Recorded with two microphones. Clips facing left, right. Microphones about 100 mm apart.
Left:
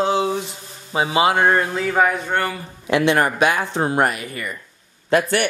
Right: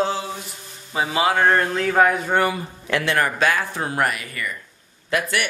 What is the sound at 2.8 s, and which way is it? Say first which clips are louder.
A man's voice: left 4 dB; 20° left (ahead or behind).